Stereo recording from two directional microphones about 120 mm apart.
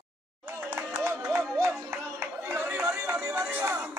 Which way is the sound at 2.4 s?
20° right (ahead or behind).